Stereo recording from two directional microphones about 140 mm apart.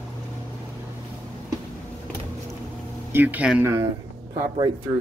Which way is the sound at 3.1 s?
10° right (ahead or behind).